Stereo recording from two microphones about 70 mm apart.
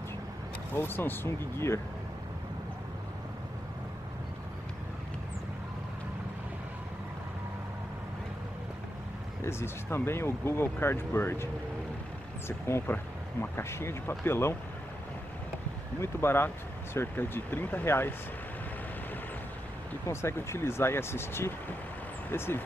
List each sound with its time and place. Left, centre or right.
0.7 s speech: left
9.4 s speech: left
12.4 s speech: left
16.0 s speech: left
20.1 s speech: left